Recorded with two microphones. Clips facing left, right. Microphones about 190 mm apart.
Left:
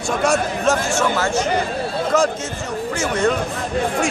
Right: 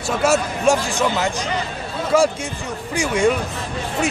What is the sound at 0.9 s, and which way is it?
Speech, 15° right (ahead or behind).